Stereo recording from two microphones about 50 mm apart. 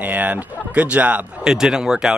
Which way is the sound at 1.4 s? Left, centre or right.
Centre.